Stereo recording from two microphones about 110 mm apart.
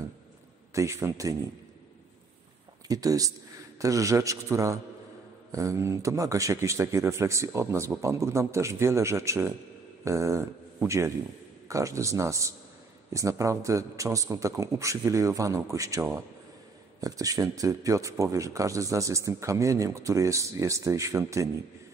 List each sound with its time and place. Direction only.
0.7 s speech: 25° right (ahead or behind)
2.9 s speech: 35° right (ahead or behind)